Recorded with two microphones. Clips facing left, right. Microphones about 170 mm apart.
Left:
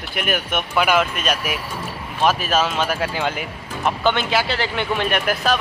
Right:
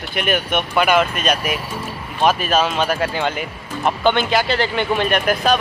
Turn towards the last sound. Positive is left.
turn(degrees=5)  # may be behind; listen again after turning